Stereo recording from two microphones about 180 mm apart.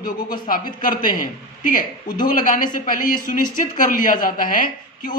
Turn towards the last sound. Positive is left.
turn(degrees=50)  # may be behind; listen again after turning